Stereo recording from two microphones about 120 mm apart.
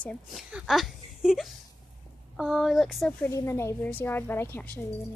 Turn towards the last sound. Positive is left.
turn(degrees=15)  # may be behind; listen again after turning